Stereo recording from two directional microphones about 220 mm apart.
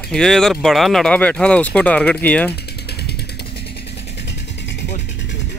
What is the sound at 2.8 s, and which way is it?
Mechanisms, 50° left (ahead or behind).